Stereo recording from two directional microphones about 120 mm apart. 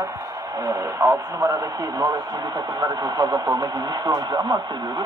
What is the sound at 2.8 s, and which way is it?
Speech, 35° right (ahead or behind).